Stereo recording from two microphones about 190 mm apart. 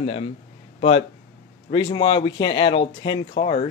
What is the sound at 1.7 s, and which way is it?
Speech, 25° left (ahead or behind).